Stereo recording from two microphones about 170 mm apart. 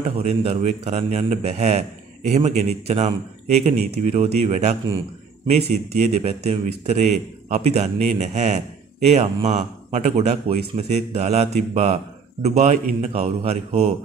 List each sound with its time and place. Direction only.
0.2 s a man's voice: 35° right (ahead or behind)